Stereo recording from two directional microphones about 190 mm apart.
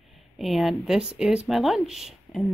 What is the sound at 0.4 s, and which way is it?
Speech, centre (ahead or behind).